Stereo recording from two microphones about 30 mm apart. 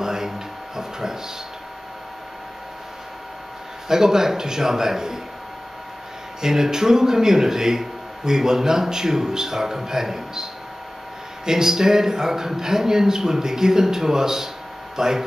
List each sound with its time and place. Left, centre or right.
0.0 s a sound: centre
3.9 s speech: centre
6.4 s speech: centre